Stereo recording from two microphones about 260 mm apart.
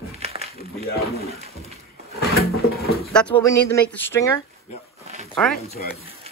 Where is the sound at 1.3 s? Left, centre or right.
Right.